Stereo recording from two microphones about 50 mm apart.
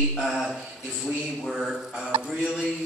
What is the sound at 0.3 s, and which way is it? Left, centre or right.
Speech, centre.